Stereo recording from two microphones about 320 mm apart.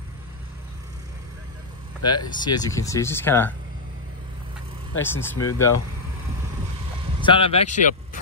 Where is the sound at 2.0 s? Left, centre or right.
Centre.